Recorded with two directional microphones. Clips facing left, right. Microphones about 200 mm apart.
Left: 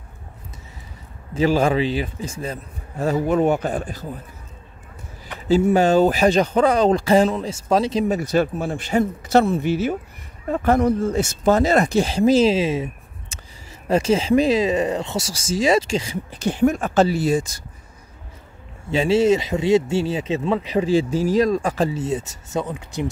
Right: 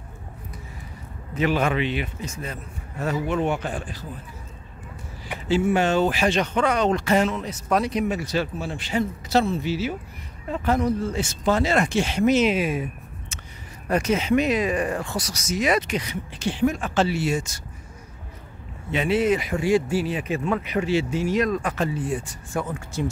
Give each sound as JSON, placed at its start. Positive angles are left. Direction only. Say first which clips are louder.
{"t": 1.3, "sound": "speech", "louder": "left 5 dB", "side_deg": 30}
{"t": 5.5, "sound": "speech", "louder": "left 5 dB", "side_deg": 35}
{"t": 8.1, "sound": "speech", "louder": "left 6 dB", "side_deg": 45}
{"t": 16.4, "sound": "speech", "louder": "left 4 dB", "side_deg": 45}
{"t": 18.9, "sound": "speech", "louder": "left 5 dB", "side_deg": 30}